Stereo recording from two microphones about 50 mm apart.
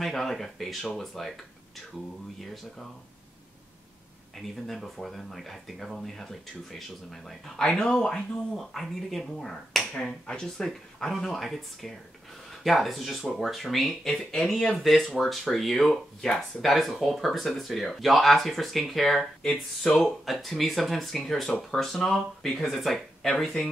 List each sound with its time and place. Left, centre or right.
0.0 s speech: centre
2.4 s speech: centre
4.4 s speech: centre
9.9 s speech: centre
10.6 s speech: centre
20.2 s speech: centre